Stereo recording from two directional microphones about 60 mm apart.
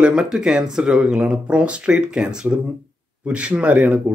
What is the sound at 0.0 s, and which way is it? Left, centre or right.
Speech, centre.